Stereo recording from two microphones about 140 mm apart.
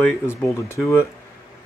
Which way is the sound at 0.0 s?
15° left (ahead or behind).